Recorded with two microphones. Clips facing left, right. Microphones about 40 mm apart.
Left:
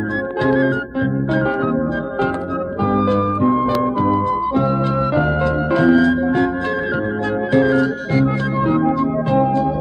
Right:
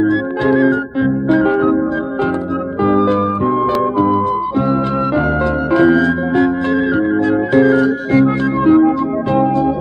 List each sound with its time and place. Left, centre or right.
1.4 s music: right
4.6 s music: right
7.2 s music: right